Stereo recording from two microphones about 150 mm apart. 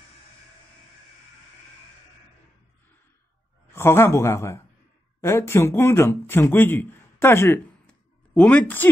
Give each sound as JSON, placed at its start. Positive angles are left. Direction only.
{"t": 3.7, "sound": "a man's voice", "side_deg": 15}